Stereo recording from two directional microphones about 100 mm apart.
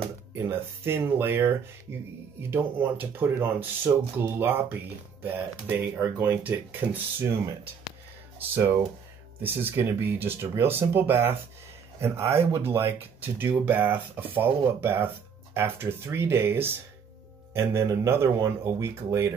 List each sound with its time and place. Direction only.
0.5 s speech: 25° right (ahead or behind)
8.4 s speech: 20° right (ahead or behind)